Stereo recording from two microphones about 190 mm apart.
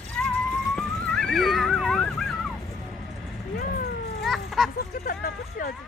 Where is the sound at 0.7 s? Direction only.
Centre (ahead or behind).